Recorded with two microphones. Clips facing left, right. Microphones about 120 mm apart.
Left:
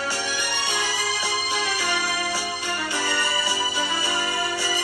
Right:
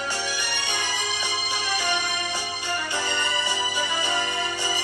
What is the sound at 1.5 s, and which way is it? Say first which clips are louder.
Music: right 2 dB; 15° right (ahead or behind).